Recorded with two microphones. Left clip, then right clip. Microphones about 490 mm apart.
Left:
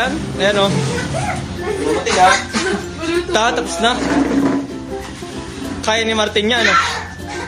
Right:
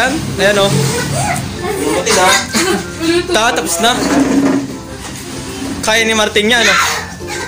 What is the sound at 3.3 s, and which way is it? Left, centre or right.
Speech, left.